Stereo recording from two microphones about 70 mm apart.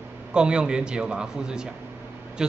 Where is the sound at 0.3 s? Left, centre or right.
Centre.